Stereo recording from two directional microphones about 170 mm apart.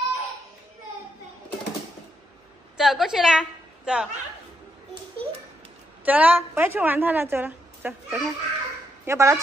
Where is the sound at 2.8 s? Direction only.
Centre (ahead or behind).